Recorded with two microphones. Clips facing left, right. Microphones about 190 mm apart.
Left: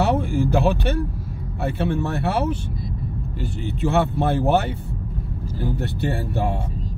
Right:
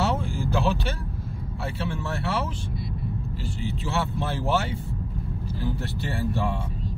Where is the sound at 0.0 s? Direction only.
60° left (ahead or behind).